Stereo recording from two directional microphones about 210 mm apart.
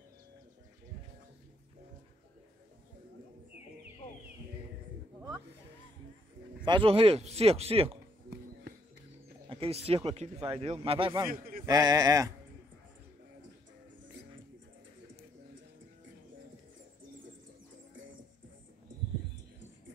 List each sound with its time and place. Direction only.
6.6 s a man's voice: 25° right (ahead or behind)
9.5 s a man's voice: 25° right (ahead or behind)
11.2 s a man's voice: 45° right (ahead or behind)
11.6 s speech: 15° right (ahead or behind)